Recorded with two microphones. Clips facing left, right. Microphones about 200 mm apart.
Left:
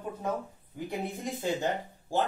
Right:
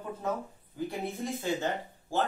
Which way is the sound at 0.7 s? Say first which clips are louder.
Right 1 dB; 15° left (ahead or behind).